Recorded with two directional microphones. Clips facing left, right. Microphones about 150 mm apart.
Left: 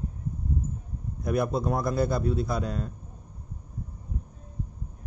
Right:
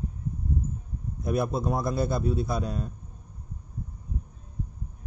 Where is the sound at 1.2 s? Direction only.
25° right (ahead or behind).